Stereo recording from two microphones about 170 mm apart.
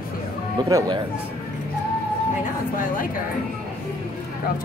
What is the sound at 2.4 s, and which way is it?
Speech, 50° left (ahead or behind).